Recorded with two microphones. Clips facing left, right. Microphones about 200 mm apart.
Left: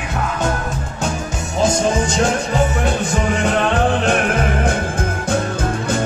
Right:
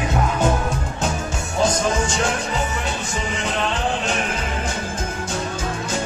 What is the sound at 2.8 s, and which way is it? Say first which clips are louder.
Music: left 8 dB; 55° left (ahead or behind).